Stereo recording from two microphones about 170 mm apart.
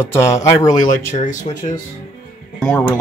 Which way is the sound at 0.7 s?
50° left (ahead or behind).